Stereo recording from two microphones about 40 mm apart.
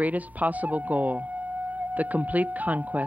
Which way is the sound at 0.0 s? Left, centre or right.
Right.